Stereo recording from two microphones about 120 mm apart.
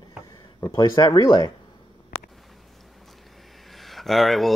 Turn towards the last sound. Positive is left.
turn(degrees=0)  # may be behind; listen again after turning